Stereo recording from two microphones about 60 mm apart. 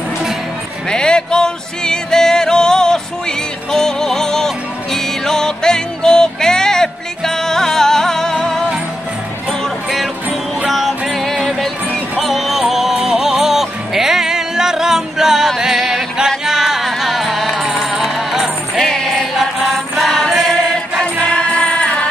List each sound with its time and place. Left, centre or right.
0.8 s music: centre
10.7 s music: centre
19.3 s mantra: centre
20.1 s music: centre
21.2 s music: left